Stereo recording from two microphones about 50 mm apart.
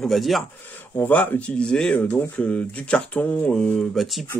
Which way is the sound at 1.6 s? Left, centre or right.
Centre.